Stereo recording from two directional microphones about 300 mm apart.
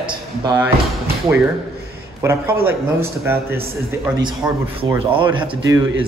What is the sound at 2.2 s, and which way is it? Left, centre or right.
A man's voice, centre.